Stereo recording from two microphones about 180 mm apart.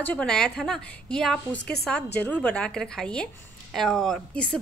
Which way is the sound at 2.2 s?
5° left (ahead or behind).